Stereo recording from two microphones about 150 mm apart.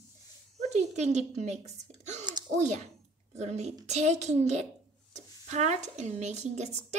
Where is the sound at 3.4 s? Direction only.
50° right (ahead or behind).